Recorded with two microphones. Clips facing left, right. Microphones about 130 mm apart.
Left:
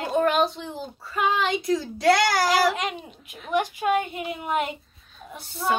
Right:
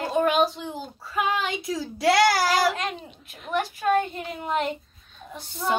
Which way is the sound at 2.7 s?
15° left (ahead or behind).